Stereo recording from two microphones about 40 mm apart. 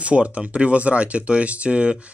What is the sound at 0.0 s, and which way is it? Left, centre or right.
Speech, right.